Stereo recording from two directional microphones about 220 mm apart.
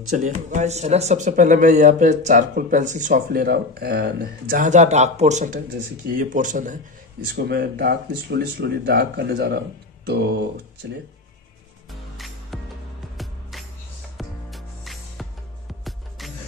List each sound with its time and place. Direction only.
0.2 s speech: 30° right (ahead or behind); by 11.0 s 50° right (ahead or behind)
12.5 s music: centre (ahead or behind)